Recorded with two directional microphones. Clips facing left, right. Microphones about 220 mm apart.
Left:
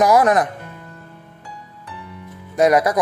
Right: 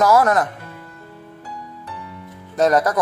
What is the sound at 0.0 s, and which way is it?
Speech, 15° left (ahead or behind).